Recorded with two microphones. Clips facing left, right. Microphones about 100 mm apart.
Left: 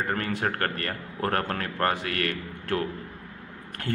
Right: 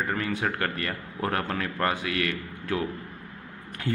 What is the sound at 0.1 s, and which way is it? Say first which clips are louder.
A man's voice: even; 50° left (ahead or behind).